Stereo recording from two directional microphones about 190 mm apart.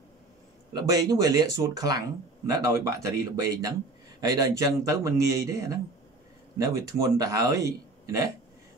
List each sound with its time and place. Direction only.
0.7 s speech: 20° right (ahead or behind)